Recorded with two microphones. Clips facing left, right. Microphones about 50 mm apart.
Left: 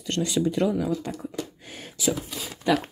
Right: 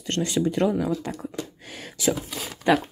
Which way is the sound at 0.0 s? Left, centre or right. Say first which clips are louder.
Right 1 dB; right.